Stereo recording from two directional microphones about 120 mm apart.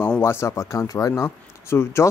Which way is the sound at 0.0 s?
20° left (ahead or behind).